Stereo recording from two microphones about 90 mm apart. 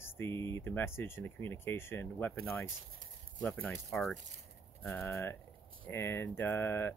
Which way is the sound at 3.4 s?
10° left (ahead or behind).